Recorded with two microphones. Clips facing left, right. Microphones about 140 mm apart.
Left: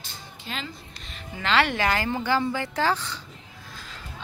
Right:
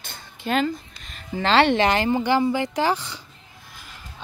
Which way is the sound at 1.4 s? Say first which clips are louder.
Right 6 dB; 30° right (ahead or behind).